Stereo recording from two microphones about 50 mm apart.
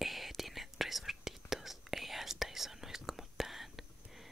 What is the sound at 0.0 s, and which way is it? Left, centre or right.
Whispering, centre.